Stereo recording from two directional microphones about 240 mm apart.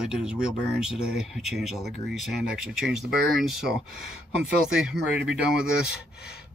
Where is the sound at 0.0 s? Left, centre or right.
Centre.